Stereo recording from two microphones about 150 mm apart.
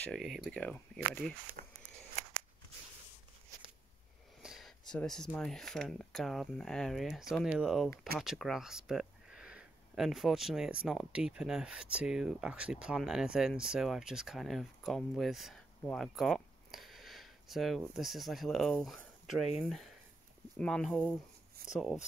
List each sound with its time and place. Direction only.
0.0 s speech: centre (ahead or behind)
1.6 s walk: 75° right (ahead or behind)
4.4 s a sound: centre (ahead or behind)
5.3 s speech: 5° left (ahead or behind)